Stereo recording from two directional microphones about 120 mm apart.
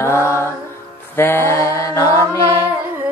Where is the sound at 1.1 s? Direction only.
20° left (ahead or behind).